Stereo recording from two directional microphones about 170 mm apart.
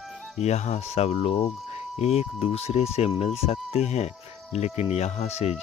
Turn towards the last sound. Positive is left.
turn(degrees=40)  # may be behind; listen again after turning